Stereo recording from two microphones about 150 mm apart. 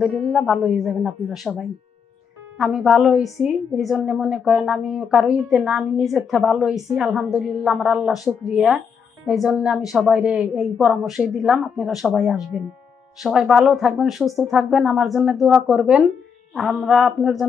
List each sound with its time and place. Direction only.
0.0 s a woman's voice: centre (ahead or behind)